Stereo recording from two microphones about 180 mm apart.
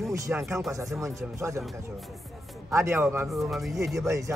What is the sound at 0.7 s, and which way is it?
Speech, 20° right (ahead or behind).